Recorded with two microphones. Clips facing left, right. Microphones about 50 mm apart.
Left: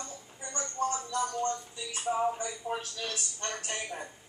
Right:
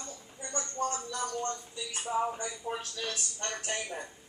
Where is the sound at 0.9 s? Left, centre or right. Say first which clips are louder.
Left 3 dB; centre.